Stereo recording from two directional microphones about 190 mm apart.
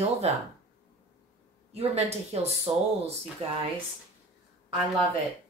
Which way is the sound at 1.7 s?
35° right (ahead or behind).